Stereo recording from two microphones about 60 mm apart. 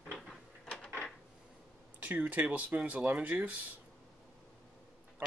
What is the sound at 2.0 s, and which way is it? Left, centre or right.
Speech, right.